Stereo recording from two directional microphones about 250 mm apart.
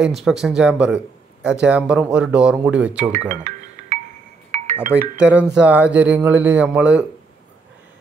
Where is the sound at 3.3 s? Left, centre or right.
Right.